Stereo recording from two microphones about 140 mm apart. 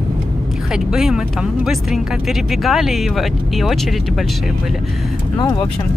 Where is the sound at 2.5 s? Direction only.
Centre (ahead or behind).